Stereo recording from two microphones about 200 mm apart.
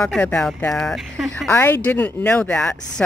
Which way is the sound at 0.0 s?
5° left (ahead or behind).